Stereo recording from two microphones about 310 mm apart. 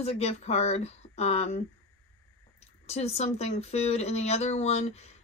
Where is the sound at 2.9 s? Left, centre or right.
Left.